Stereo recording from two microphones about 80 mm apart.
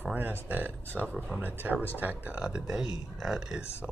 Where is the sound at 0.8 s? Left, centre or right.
Left.